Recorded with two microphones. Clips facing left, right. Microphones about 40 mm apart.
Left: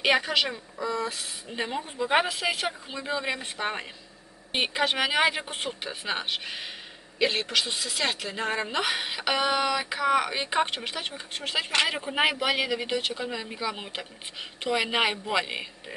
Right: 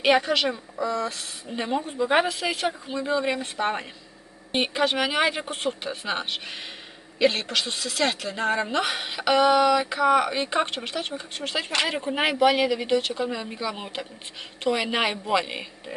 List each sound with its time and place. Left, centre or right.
0.0 s speech: centre
2.2 s a woman's voice: centre
3.0 s a woman's voice: centre